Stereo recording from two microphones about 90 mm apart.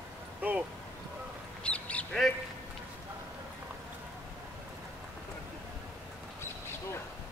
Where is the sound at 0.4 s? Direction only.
15° right (ahead or behind).